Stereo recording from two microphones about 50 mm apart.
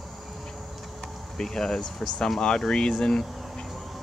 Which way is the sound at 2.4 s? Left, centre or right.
Centre.